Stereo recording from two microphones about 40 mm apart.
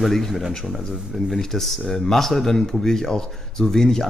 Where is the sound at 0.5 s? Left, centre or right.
Centre.